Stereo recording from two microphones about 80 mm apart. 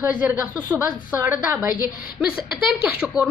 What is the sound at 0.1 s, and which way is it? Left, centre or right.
Speech, centre.